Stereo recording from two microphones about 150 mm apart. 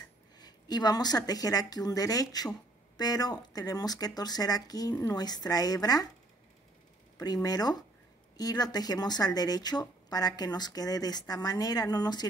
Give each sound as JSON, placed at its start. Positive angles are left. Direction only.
{"t": 0.4, "sound": "speech", "side_deg": 25}
{"t": 7.4, "sound": "speech", "side_deg": 25}